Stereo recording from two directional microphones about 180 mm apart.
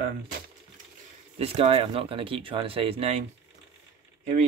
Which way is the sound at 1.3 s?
35° right (ahead or behind).